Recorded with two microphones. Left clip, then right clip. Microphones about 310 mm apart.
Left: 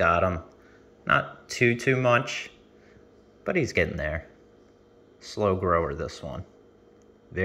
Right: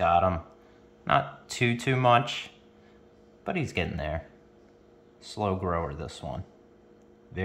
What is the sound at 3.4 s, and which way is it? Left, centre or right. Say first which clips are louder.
Speech: left 6 dB; centre.